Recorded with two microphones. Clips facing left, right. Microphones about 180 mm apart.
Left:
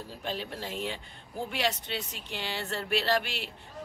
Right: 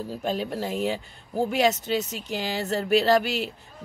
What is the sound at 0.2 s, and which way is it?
Speech, 45° right (ahead or behind).